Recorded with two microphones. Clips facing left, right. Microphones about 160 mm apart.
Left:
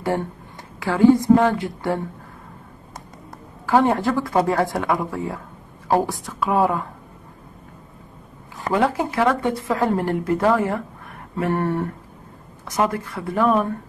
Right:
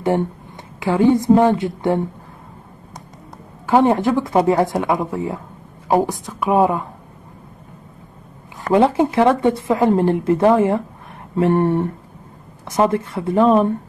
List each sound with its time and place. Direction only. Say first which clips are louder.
0.7 s speech: even; 20° right (ahead or behind)
3.6 s speech: right 3 dB; 20° right (ahead or behind)
8.7 s speech: right 6 dB; 25° right (ahead or behind)